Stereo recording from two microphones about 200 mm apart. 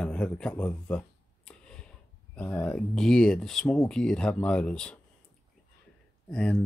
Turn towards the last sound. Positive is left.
turn(degrees=5)  # may be behind; listen again after turning